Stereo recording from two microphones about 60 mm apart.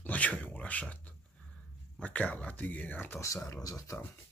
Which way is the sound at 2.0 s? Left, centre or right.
Left.